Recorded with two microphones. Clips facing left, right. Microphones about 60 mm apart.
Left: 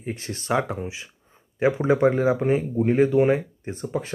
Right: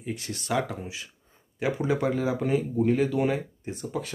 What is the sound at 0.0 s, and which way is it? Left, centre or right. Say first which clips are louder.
Speech: left 2 dB; left.